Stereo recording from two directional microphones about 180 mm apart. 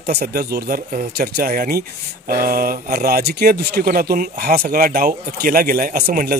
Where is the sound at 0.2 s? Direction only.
60° right (ahead or behind).